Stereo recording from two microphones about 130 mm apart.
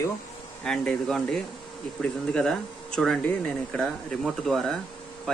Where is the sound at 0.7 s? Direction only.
5° left (ahead or behind).